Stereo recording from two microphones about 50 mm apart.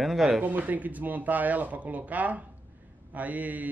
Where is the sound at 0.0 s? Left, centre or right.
Centre.